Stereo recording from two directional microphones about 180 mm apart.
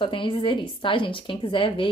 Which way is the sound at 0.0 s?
30° left (ahead or behind).